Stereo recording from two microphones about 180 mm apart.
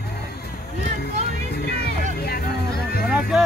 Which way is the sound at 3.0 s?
5° right (ahead or behind).